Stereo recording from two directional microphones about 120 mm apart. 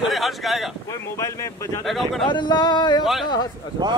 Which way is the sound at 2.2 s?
40° left (ahead or behind).